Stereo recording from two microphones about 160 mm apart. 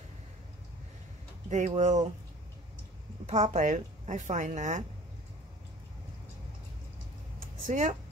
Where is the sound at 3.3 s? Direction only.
45° right (ahead or behind).